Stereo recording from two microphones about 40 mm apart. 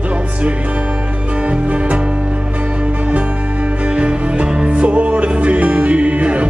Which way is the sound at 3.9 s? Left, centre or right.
Right.